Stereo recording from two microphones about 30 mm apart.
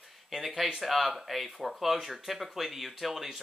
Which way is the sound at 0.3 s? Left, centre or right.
Centre.